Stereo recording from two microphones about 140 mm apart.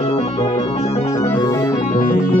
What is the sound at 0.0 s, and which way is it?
Music, 50° left (ahead or behind).